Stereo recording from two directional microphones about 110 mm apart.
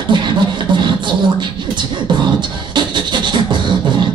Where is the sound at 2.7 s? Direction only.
45° right (ahead or behind).